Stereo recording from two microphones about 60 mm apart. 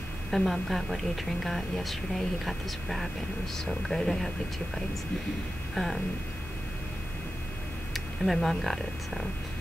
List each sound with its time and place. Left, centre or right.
0.3 s speech: centre
5.8 s speech: centre
7.9 s speech: centre